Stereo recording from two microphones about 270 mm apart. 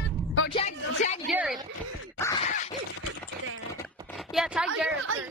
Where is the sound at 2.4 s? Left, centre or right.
Left.